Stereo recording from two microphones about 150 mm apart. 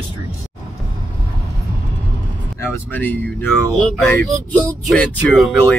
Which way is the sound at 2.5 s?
10° left (ahead or behind).